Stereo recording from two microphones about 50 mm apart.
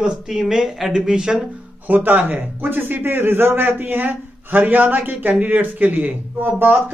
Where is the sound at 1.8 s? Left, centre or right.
Right.